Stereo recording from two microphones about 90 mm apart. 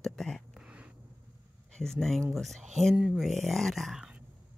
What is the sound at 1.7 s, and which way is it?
Speech, 5° left (ahead or behind).